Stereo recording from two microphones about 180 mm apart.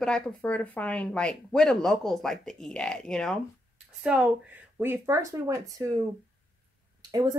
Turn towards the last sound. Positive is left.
turn(degrees=-20)  # may be behind; listen again after turning